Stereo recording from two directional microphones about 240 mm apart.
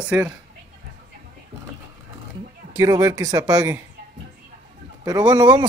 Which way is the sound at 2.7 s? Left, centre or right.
Centre.